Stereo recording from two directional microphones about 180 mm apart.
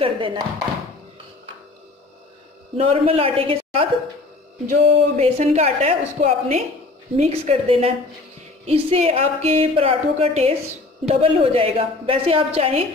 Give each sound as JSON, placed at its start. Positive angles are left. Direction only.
{"t": 0.0, "sound": "speech", "side_deg": -30}
{"t": 2.8, "sound": "speech", "side_deg": -30}